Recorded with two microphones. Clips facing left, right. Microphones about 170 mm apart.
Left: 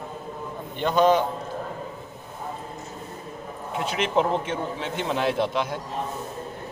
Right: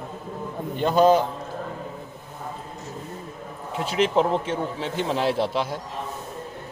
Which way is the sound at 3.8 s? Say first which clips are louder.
Right 2 dB; 35° right (ahead or behind).